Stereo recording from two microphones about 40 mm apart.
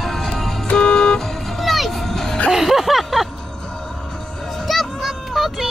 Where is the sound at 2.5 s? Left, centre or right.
Centre.